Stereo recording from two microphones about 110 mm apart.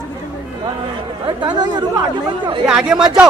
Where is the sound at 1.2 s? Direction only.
45° right (ahead or behind).